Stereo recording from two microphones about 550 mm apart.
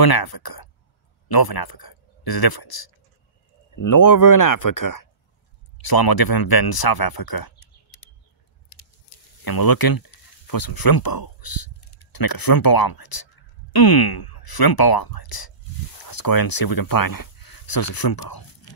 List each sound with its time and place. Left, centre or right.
0.0 s speech: left
8.7 s a sound: left
9.4 s speech: left